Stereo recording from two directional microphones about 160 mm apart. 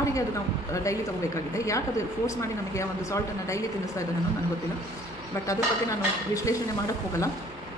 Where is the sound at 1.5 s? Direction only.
20° left (ahead or behind).